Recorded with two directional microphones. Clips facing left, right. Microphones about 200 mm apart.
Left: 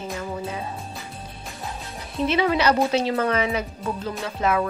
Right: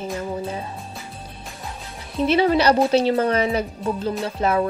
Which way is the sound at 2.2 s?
35° right (ahead or behind).